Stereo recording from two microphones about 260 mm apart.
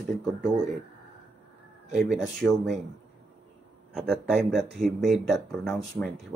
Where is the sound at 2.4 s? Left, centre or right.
Centre.